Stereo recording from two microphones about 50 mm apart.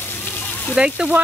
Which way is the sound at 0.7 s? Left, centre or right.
Centre.